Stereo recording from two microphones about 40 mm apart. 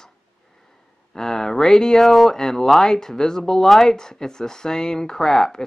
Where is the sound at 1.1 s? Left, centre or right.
Centre.